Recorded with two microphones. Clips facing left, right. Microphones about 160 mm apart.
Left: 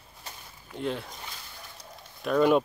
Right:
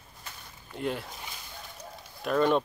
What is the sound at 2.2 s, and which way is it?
Speech, 5° left (ahead or behind).